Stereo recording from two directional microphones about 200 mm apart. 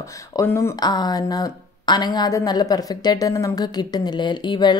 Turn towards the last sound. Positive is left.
turn(degrees=20)  # may be behind; listen again after turning